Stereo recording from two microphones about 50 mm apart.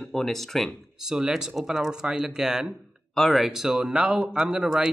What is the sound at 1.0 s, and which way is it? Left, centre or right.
Speech, centre.